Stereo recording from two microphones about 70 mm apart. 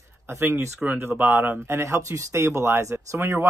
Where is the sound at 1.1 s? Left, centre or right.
Right.